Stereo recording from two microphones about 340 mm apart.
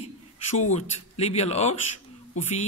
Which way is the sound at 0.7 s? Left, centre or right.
Centre.